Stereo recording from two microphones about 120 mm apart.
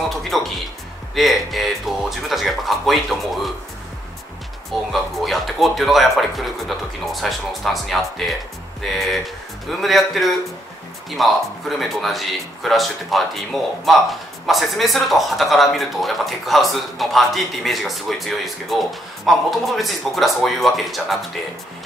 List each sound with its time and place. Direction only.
0.3 s speech: centre (ahead or behind)
5.2 s speech: centre (ahead or behind)